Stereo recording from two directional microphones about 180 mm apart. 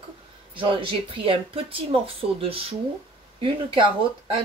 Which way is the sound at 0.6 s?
30° right (ahead or behind).